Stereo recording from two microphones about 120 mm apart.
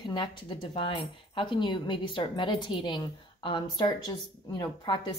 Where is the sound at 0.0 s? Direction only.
40° left (ahead or behind).